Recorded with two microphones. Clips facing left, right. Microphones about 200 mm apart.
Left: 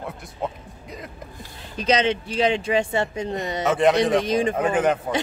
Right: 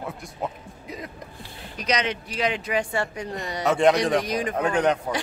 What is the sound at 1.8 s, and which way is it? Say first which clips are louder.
Speech: left 5 dB; 30° left (ahead or behind).